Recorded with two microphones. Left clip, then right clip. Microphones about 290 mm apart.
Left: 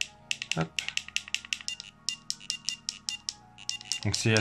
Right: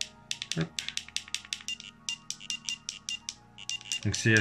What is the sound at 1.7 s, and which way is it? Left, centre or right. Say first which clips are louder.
Music: even; centre.